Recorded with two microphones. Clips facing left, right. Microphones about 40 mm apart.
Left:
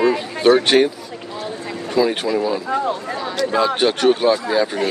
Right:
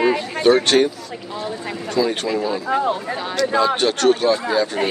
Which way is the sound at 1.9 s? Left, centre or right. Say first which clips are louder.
Left 2 dB; centre.